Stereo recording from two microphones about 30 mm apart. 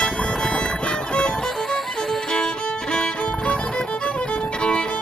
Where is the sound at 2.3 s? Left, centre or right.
Centre.